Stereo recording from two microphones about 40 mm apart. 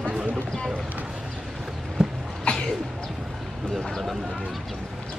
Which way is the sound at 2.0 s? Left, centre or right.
Centre.